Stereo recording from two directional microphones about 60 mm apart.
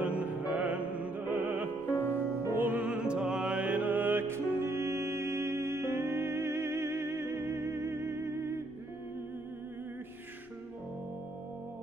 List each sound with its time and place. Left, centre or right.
0.0 s music: right
1.9 s music: left
2.5 s music: right
2.8 s music: centre; by 8.6 s right